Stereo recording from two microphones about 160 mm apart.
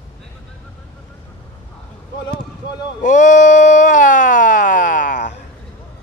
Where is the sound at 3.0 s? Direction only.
55° left (ahead or behind).